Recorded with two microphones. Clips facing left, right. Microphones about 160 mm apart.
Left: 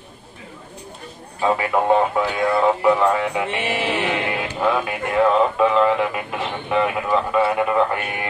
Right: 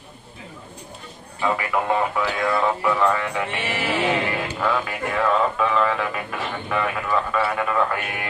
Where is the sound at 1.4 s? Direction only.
25° left (ahead or behind).